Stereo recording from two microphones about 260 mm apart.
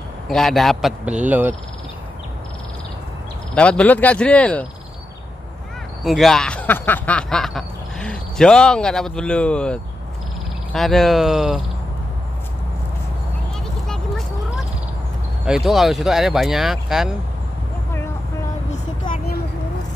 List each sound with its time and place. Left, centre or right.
0.3 s speech: centre
3.5 s speech: centre
6.0 s speech: centre
13.8 s vehicle: centre
15.4 s speech: centre
18.7 s vehicle: left